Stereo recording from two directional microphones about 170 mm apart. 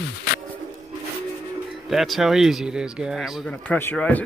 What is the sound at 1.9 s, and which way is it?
Speech, centre (ahead or behind).